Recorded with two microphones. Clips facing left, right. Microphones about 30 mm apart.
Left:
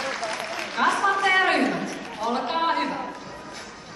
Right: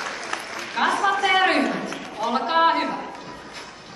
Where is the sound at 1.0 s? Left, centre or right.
Right.